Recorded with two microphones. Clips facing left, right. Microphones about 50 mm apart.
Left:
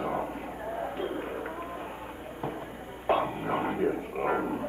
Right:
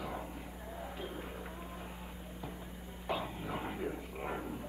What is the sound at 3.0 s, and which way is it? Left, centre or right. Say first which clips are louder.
Speech: left 11 dB; left.